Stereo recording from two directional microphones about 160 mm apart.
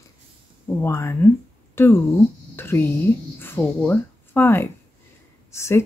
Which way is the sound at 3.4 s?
10° left (ahead or behind).